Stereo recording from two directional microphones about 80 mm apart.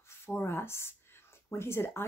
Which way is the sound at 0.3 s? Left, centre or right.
Left.